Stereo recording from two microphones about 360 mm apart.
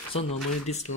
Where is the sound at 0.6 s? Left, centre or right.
Centre.